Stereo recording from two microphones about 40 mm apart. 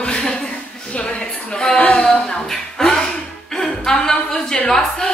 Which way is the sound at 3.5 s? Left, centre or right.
Centre.